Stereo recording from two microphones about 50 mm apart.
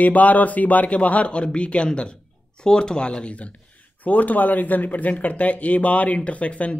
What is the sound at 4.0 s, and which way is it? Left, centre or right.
Speech, left.